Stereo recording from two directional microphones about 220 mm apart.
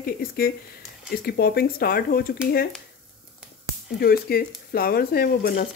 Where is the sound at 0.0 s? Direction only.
40° left (ahead or behind).